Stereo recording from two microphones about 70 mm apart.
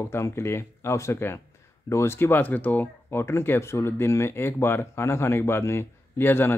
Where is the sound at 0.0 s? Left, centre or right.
Left.